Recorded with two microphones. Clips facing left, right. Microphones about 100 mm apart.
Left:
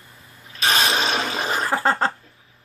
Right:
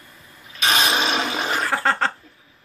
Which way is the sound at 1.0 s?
20° right (ahead or behind).